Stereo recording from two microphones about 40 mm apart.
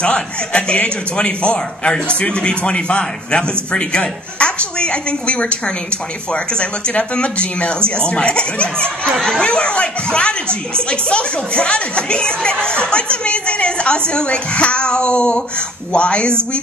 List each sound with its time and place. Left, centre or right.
0.0 s speech: left